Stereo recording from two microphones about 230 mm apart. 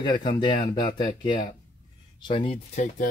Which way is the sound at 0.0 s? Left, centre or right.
Left.